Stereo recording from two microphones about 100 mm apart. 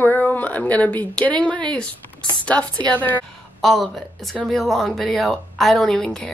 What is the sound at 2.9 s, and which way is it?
Speech, 20° left (ahead or behind).